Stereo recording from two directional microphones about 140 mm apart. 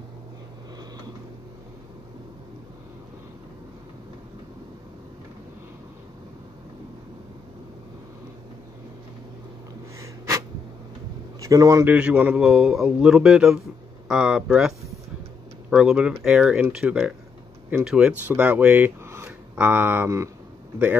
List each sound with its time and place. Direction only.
9.9 s sneeze: 20° right (ahead or behind)
11.4 s a man's voice: 25° right (ahead or behind)
11.9 s speech: 10° right (ahead or behind)
15.7 s speech: 5° right (ahead or behind)